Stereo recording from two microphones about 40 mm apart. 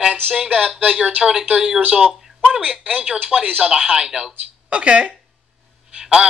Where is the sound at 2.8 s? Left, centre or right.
Right.